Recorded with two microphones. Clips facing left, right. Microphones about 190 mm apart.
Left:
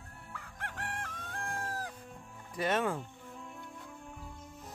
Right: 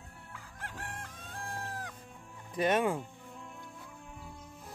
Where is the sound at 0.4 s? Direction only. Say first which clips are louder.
Left 2 dB; 60° left (ahead or behind); by 2.0 s 40° left (ahead or behind).